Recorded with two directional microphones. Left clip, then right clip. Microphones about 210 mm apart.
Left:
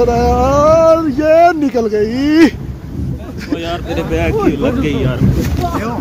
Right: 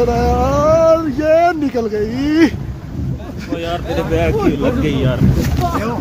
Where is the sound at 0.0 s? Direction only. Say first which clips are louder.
Left 3 dB; 20° left (ahead or behind).